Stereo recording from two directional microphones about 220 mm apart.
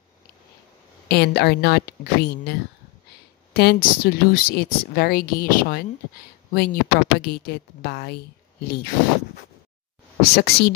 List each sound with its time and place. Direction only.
1.0 s speech: 50° left (ahead or behind)
10.2 s speech: 45° left (ahead or behind)